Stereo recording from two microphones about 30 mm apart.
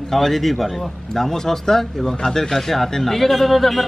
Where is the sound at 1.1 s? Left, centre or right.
Centre.